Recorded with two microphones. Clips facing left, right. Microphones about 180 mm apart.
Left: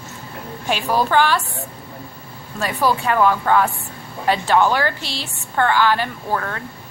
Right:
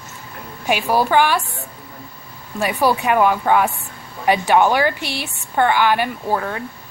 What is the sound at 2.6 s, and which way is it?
A woman's voice, 15° right (ahead or behind).